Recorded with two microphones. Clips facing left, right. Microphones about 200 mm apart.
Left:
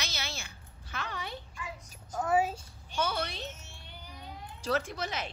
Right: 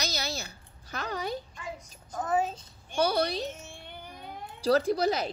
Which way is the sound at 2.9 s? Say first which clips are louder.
Right 7 dB; 35° right (ahead or behind).